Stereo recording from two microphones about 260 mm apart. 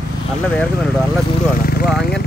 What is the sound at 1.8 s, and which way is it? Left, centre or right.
Speech, centre.